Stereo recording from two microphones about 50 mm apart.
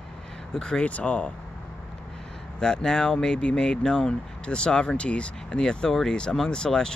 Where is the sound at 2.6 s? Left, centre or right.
Centre.